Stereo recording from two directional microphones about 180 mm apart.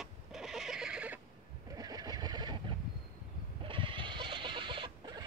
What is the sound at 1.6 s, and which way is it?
Vehicle, 20° right (ahead or behind).